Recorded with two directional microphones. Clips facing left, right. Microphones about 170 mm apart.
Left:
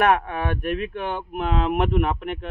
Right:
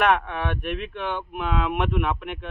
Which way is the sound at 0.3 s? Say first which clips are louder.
Left 3 dB; 45° left (ahead or behind).